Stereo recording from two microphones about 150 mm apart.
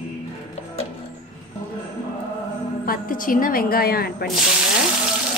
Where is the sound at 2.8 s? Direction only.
70° left (ahead or behind); by 4.3 s 90° left.